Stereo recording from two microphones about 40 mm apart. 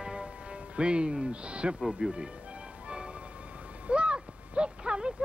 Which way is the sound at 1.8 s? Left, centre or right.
Centre.